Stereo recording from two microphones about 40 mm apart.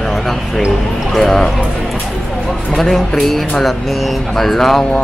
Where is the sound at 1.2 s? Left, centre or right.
Centre.